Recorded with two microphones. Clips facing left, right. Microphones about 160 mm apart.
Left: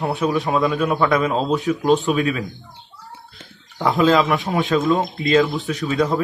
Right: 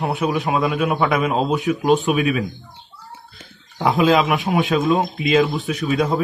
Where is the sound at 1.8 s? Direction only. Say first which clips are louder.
Right 1 dB; 20° right (ahead or behind).